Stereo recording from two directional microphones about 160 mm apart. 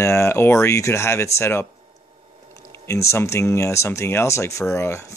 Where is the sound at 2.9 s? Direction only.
20° left (ahead or behind).